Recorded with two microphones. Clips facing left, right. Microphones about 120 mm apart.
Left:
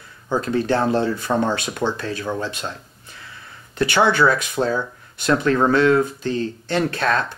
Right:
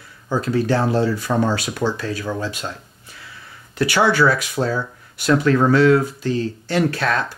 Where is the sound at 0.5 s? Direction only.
25° left (ahead or behind).